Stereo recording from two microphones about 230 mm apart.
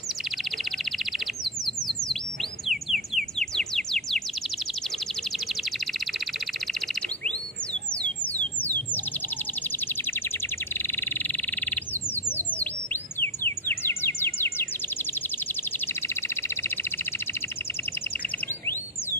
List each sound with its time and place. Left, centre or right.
0.7 s bird: centre
2.6 s bird: centre
5.5 s chirp: centre
6.7 s bird: centre
7.9 s a sound: centre
10.7 s bird: centre
16.2 s bird: centre